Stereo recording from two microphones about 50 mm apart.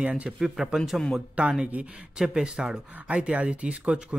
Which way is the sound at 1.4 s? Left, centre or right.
Centre.